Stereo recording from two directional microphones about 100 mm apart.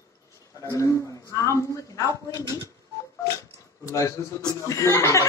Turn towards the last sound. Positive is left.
turn(degrees=30)  # may be behind; listen again after turning